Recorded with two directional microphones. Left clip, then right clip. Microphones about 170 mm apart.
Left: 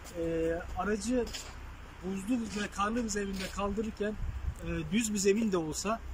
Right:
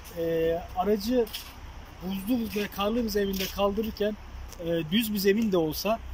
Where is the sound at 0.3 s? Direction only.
20° right (ahead or behind).